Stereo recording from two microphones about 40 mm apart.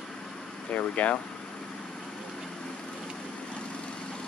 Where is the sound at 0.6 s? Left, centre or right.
Left.